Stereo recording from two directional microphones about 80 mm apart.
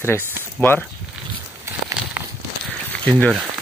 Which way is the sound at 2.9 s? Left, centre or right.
Centre.